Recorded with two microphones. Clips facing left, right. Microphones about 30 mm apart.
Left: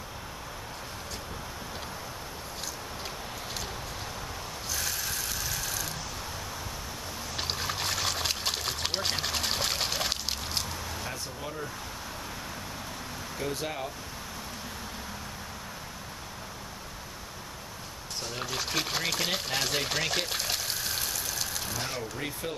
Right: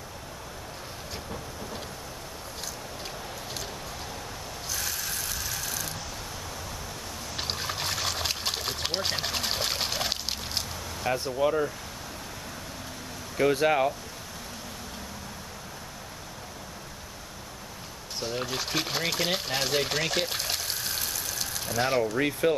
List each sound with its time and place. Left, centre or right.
4.6 s a sound: centre
7.3 s trickle: centre
11.1 s speech: right
13.4 s speech: right
18.2 s speech: centre
21.7 s speech: centre